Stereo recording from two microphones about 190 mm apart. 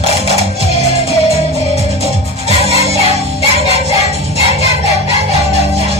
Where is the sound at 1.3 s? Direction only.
30° left (ahead or behind).